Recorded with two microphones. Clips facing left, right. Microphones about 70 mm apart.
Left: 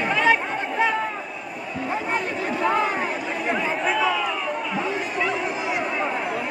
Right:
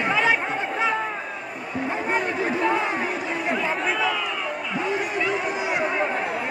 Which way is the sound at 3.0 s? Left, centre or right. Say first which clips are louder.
Even; centre.